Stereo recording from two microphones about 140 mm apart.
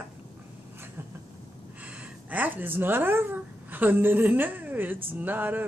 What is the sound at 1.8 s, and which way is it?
Gasp, 10° right (ahead or behind).